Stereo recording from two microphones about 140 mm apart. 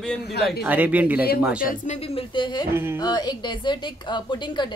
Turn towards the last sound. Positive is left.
turn(degrees=35)  # may be behind; listen again after turning